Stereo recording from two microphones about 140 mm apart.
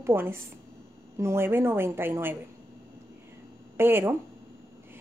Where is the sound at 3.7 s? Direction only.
15° right (ahead or behind).